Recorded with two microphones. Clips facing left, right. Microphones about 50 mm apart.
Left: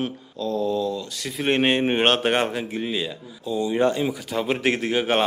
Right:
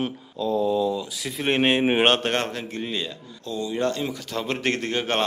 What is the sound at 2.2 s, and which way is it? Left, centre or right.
Speech, centre.